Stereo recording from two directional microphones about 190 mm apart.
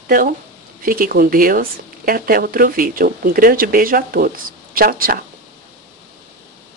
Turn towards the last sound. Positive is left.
turn(degrees=-50)  # may be behind; listen again after turning